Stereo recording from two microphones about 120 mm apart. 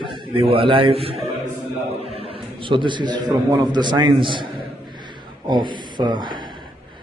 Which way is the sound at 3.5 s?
35° right (ahead or behind).